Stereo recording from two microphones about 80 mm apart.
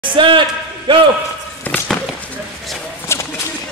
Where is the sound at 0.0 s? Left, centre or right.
Right.